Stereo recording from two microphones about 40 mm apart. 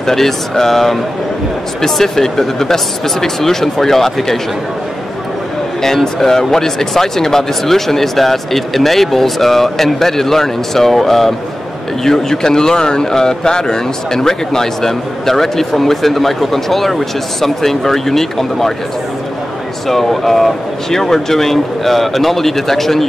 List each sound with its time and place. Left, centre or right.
0.0 s speech: centre
5.8 s speech: centre
19.9 s speech: centre